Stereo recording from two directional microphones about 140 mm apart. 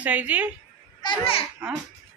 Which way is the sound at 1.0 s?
40° left (ahead or behind).